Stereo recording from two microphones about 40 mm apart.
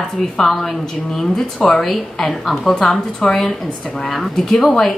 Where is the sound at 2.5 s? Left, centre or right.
Centre.